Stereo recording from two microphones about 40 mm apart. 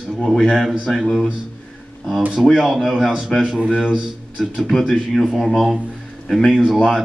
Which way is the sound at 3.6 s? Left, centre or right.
Right.